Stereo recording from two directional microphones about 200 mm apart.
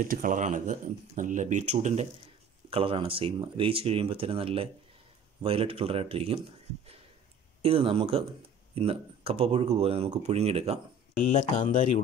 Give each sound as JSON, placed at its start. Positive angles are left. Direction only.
{"t": 0.1, "sound": "speech", "side_deg": -45}
{"t": 7.6, "sound": "speech", "side_deg": -30}
{"t": 11.1, "sound": "speech", "side_deg": 40}